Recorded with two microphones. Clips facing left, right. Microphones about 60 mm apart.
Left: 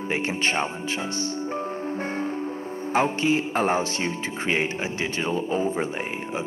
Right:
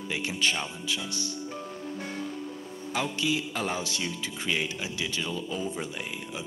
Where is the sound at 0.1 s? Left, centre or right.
Left.